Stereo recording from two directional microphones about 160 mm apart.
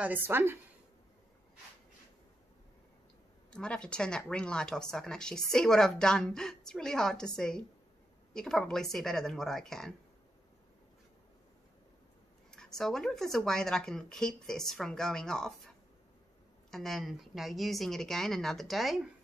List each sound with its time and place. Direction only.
0.0 s a woman's voice: 10° right (ahead or behind)
3.4 s speech: 5° left (ahead or behind)
12.4 s speech: 5° left (ahead or behind)
16.7 s speech: centre (ahead or behind)